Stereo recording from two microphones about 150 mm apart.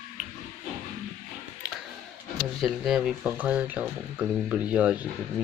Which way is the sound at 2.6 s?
Centre (ahead or behind).